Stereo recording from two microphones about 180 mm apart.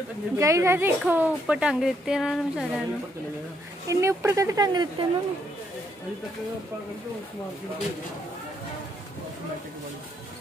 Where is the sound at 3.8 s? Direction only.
15° right (ahead or behind).